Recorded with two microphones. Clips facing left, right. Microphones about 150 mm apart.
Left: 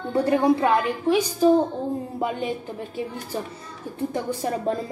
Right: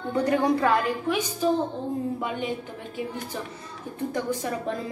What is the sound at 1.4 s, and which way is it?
A woman's voice, 40° left (ahead or behind).